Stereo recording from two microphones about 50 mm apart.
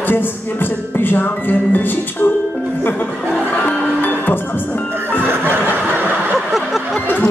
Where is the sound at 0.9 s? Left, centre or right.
Left.